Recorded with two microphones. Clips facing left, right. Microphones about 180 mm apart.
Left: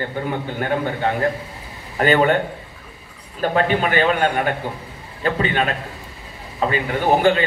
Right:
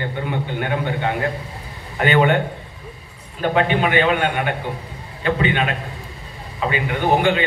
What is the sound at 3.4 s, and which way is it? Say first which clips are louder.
A man's voice: even; 40° left (ahead or behind).